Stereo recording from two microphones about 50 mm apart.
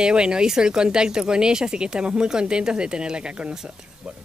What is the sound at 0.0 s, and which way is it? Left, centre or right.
Speech, centre.